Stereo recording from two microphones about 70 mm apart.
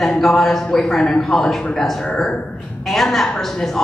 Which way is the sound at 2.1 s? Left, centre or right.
Centre.